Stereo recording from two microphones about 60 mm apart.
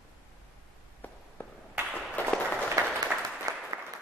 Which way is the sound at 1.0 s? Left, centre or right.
Left.